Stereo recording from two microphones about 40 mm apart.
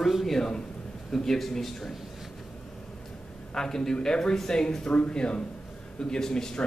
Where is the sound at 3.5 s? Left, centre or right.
Centre.